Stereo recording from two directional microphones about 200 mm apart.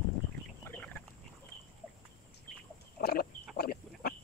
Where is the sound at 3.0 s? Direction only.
50° left (ahead or behind).